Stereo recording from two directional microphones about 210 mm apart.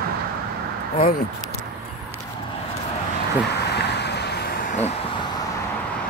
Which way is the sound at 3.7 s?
55° left (ahead or behind).